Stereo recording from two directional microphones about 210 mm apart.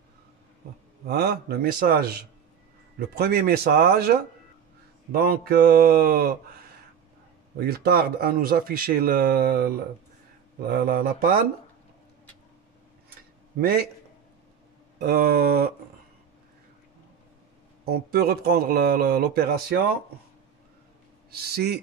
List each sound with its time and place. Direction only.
1.0 s speech: 50° right (ahead or behind)
7.5 s speech: 50° right (ahead or behind)
15.0 s speech: 45° right (ahead or behind)
17.8 s speech: 45° right (ahead or behind)
21.3 s speech: 50° right (ahead or behind)